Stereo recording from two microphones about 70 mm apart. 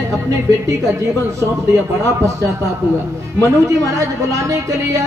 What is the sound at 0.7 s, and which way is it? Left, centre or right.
A woman's voice, right.